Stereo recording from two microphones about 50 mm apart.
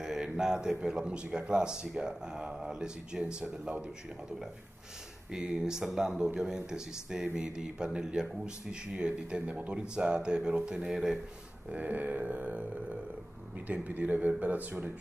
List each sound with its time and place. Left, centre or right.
0.0 s a sound: centre
1.0 s speech: centre
5.4 s speech: centre
11.7 s speech: right
13.7 s speech: right